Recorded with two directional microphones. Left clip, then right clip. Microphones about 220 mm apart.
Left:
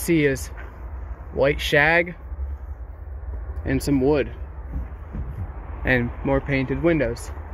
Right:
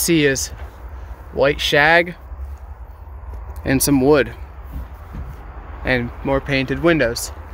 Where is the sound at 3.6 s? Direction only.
25° right (ahead or behind).